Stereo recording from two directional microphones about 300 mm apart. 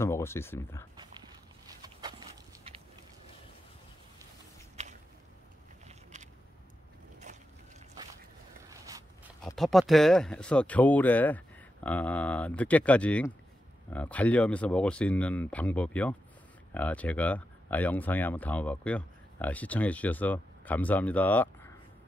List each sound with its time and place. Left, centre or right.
0.0 s speech: centre
1.7 s a sound: centre
4.8 s whip: right
7.3 s boat: right
8.6 s a sound: centre
9.4 s speech: centre